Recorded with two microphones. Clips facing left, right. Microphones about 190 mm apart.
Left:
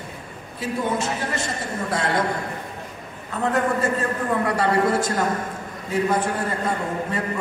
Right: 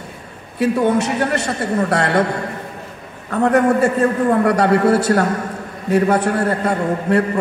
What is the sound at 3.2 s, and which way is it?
A man's voice, 65° right (ahead or behind).